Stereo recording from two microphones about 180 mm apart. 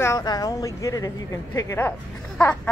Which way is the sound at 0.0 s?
20° left (ahead or behind).